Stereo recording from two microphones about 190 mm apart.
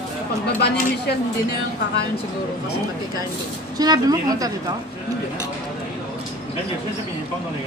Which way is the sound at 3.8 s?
20° right (ahead or behind).